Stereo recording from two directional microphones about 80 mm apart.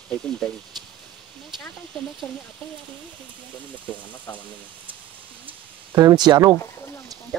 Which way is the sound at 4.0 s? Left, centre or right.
Centre.